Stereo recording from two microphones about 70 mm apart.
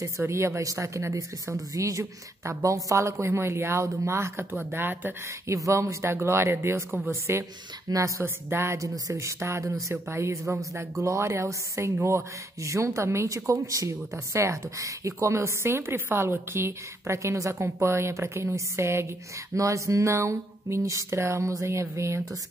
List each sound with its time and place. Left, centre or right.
0.3 s speech: right
4.6 s speech: right
5.5 s speech: right
7.9 s speech: right
8.2 s speech: right